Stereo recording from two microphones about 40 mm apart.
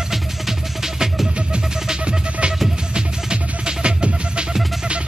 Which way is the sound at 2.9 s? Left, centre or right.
Right.